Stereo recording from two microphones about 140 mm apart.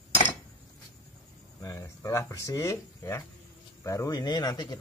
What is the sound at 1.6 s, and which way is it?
A man's voice, 20° left (ahead or behind).